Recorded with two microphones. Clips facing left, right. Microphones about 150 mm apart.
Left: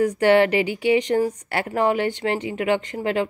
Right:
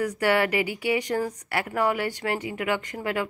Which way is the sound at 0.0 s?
25° left (ahead or behind).